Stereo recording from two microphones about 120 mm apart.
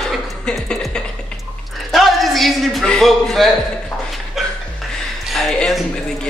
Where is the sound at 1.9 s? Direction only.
Centre (ahead or behind).